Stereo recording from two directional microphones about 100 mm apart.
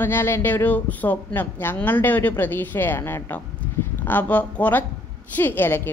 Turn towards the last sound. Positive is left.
turn(degrees=20)  # may be behind; listen again after turning